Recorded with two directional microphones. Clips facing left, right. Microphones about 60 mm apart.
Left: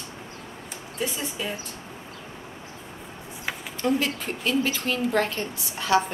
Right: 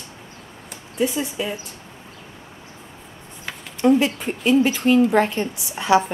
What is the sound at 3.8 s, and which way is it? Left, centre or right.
A woman's voice, right.